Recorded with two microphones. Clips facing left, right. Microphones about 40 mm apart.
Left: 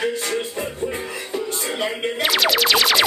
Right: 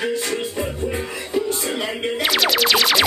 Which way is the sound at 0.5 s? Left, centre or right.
Centre.